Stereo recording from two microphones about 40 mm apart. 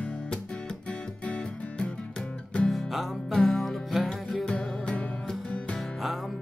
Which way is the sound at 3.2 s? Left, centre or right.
Centre.